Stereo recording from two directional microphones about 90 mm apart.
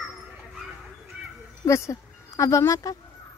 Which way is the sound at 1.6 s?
35° left (ahead or behind).